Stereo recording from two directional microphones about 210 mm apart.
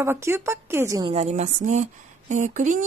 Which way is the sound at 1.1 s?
35° right (ahead or behind).